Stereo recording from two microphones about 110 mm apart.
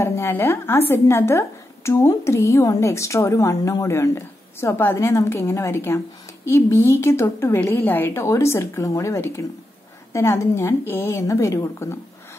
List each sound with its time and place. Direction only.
0.0 s a woman's voice: 25° left (ahead or behind)